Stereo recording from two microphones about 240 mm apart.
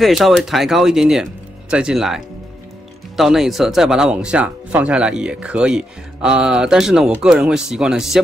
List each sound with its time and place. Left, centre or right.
0.0 s speech: centre